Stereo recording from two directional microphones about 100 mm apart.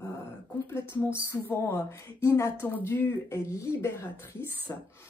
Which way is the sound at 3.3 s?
30° left (ahead or behind).